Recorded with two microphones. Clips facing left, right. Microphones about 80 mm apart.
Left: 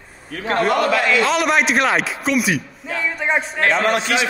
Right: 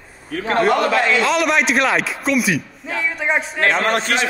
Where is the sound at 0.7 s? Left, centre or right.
Right.